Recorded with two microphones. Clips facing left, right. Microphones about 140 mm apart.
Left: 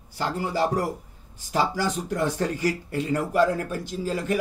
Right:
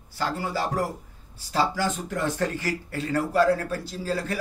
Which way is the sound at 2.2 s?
15° left (ahead or behind).